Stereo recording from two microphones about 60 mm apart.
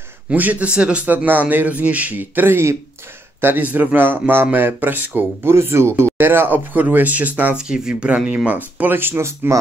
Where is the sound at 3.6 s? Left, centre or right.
Right.